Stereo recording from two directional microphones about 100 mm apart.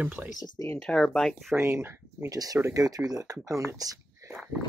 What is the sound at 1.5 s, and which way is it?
Speech, 25° right (ahead or behind).